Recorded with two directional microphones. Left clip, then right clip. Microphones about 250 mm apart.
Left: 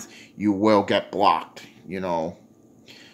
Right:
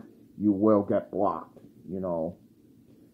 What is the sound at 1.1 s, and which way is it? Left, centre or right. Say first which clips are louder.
Speech: left 8 dB; centre.